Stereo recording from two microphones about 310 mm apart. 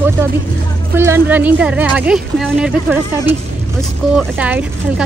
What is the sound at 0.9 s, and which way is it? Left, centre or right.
Speech, centre.